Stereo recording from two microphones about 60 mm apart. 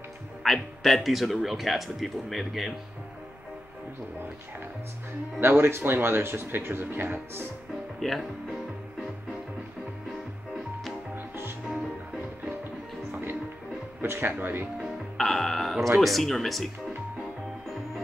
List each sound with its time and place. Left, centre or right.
0.4 s speech: centre
5.4 s speech: right
8.0 s speech: centre
14.0 s speech: right
14.8 s speech: centre